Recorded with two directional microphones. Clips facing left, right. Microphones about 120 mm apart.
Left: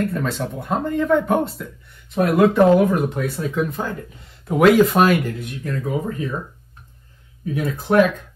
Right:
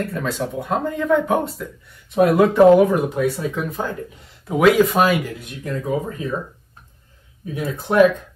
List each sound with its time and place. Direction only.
0.0 s speech: centre (ahead or behind)
5.6 s speech: 25° right (ahead or behind)